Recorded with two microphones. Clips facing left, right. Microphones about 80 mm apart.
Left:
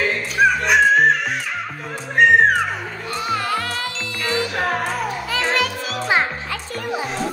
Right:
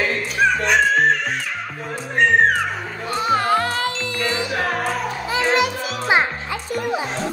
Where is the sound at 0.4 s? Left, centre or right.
Centre.